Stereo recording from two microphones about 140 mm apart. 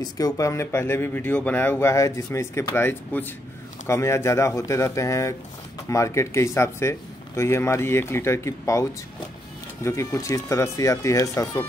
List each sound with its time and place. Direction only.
0.0 s speech: 25° left (ahead or behind)
9.8 s speech: 20° left (ahead or behind)